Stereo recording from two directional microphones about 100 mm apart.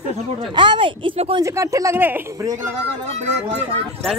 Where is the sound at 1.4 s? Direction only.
30° right (ahead or behind).